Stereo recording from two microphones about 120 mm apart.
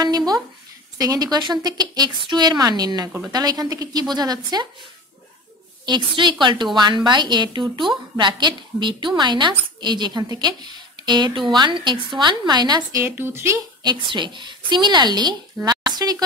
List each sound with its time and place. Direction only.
0.0 s a sound: 35° right (ahead or behind)
0.9 s a woman's voice: 30° right (ahead or behind)
5.9 s a woman's voice: 40° right (ahead or behind)
13.0 s speech: 20° right (ahead or behind)
13.8 s a woman's voice: 40° right (ahead or behind)